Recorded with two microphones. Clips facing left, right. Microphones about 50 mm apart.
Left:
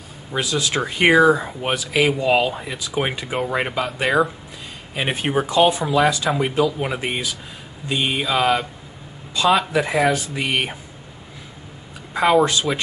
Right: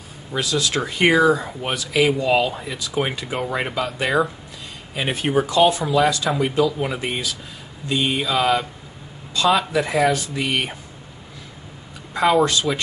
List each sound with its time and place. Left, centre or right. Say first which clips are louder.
0.3 s speech: even; centre
12.1 s speech: left 1 dB; centre